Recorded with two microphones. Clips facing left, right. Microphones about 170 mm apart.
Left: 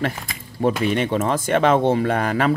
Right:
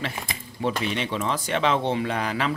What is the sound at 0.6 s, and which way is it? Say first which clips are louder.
Speech: left 7 dB; 50° left (ahead or behind).